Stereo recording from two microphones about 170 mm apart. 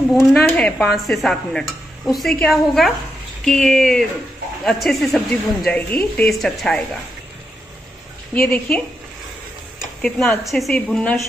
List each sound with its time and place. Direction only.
0.3 s a woman's voice: 5° left (ahead or behind)
8.4 s a woman's voice: 5° left (ahead or behind)
10.0 s a woman's voice: 5° left (ahead or behind)